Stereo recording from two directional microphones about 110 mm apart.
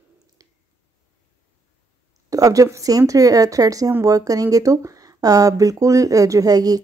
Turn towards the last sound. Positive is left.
turn(degrees=-35)  # may be behind; listen again after turning